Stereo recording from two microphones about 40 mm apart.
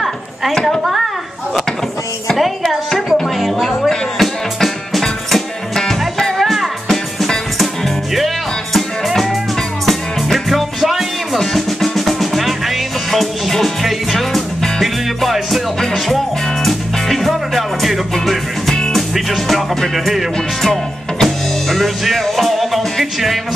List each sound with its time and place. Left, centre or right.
0.0 s a sound: centre
0.7 s music: centre
2.3 s music: centre
8.7 s music: centre
16.6 s music: centre